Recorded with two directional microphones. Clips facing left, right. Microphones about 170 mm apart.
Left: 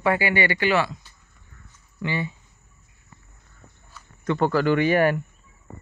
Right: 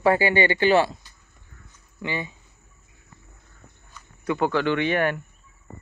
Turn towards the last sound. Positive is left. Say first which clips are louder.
# left 3 dB
turn(degrees=5)  # may be behind; listen again after turning